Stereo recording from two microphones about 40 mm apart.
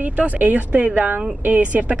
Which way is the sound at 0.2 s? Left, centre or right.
Right.